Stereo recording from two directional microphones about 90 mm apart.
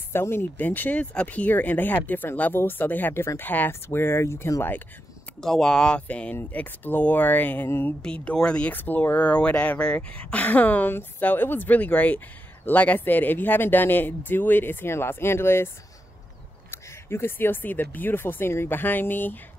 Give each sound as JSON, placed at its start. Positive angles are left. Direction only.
{"t": 0.1, "sound": "speech", "side_deg": 25}
{"t": 5.4, "sound": "speech", "side_deg": 5}
{"t": 8.0, "sound": "speech", "side_deg": 10}
{"t": 8.7, "sound": "speech", "side_deg": 20}
{"t": 16.7, "sound": "speech", "side_deg": 25}